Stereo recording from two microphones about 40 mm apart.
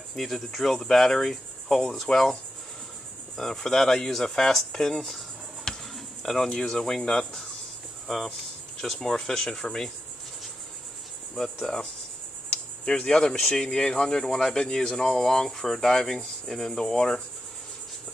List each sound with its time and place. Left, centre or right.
0.1 s speech: centre
1.3 s cricket: centre
3.3 s speech: centre
5.7 s insect: centre
6.5 s speech: centre
8.8 s speech: centre
11.6 s speech: centre
12.4 s a sound: centre
13.6 s speech: centre